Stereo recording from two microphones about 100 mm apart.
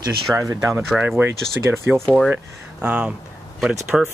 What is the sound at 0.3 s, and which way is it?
Speech, 30° right (ahead or behind).